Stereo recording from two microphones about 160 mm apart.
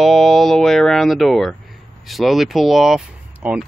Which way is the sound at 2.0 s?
Centre (ahead or behind).